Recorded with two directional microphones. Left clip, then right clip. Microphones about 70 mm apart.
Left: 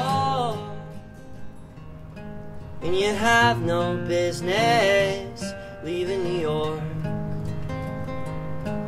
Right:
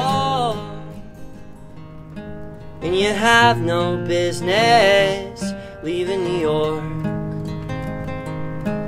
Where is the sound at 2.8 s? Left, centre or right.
Right.